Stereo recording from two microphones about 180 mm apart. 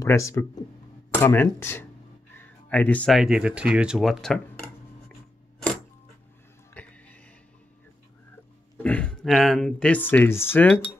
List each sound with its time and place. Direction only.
0.0 s speech: 15° left (ahead or behind)
6.7 s music: 5° left (ahead or behind)
8.8 s speech: 5° left (ahead or behind)